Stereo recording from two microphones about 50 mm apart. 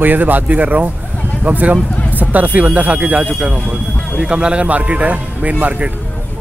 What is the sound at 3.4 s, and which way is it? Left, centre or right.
A man's voice, right.